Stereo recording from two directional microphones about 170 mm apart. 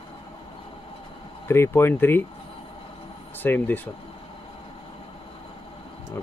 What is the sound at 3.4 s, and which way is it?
Speech, 10° left (ahead or behind).